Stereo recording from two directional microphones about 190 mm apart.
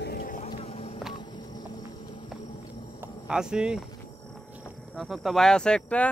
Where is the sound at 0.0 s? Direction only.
50° left (ahead or behind).